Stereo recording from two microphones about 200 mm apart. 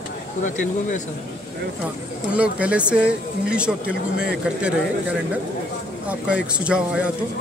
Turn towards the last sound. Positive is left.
turn(degrees=-5)  # may be behind; listen again after turning